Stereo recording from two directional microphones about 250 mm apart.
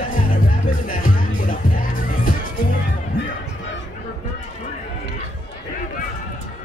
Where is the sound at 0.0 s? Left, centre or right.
Left.